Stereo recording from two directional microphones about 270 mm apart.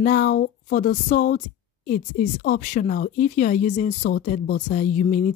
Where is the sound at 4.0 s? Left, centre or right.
Left.